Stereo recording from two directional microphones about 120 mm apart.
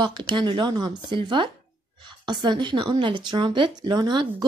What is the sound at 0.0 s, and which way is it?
Speech, 40° right (ahead or behind).